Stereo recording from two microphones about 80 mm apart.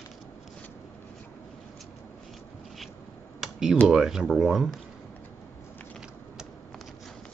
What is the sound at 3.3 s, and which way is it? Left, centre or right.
Typing, centre.